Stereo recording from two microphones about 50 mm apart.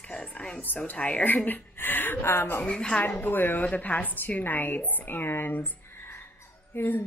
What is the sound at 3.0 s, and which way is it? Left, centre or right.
Speech, left.